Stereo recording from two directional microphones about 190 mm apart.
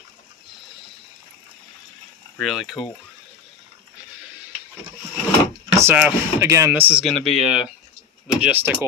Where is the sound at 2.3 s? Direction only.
Centre (ahead or behind).